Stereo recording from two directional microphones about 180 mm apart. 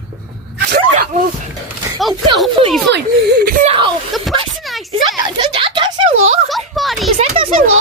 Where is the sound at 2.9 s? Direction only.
60° right (ahead or behind).